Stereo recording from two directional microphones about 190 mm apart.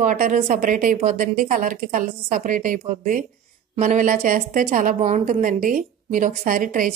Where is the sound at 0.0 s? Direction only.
45° right (ahead or behind).